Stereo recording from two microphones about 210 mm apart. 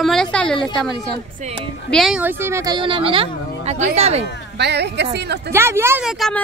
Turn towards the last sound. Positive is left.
turn(degrees=-10)  # may be behind; listen again after turning